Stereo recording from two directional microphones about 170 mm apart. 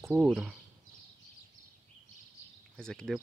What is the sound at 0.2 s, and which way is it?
Speech, 5° right (ahead or behind).